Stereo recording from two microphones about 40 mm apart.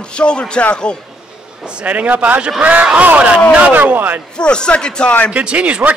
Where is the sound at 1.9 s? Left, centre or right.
Right.